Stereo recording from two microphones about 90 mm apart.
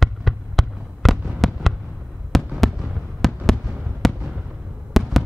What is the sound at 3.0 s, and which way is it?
Fireworks, 5° left (ahead or behind).